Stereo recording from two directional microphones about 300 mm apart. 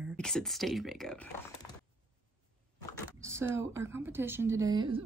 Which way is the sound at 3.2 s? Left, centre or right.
Centre.